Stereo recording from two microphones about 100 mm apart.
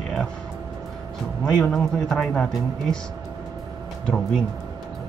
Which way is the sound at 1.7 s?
5° left (ahead or behind).